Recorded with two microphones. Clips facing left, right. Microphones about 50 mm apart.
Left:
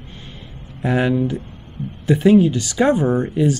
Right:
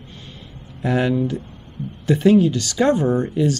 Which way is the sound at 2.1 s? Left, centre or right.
Centre.